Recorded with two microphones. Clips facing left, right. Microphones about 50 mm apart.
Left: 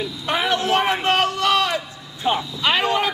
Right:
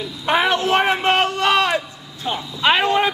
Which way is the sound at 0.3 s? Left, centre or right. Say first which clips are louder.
Right 3 dB; right.